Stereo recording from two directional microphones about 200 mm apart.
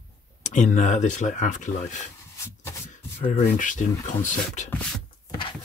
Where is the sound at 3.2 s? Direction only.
40° left (ahead or behind).